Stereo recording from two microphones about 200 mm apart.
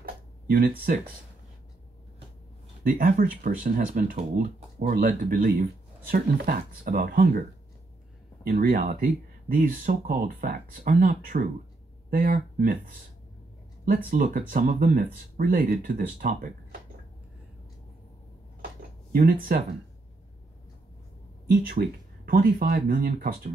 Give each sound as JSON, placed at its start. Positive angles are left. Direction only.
{"t": 0.5, "sound": "speech", "side_deg": -45}
{"t": 2.8, "sound": "speech", "side_deg": -40}
{"t": 8.5, "sound": "speech", "side_deg": -45}
{"t": 19.1, "sound": "speech", "side_deg": -45}
{"t": 21.5, "sound": "speech", "side_deg": -45}